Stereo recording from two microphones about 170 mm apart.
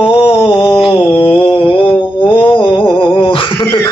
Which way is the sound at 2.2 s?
30° left (ahead or behind).